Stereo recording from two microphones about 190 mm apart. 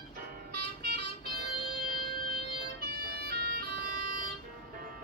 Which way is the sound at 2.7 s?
55° right (ahead or behind).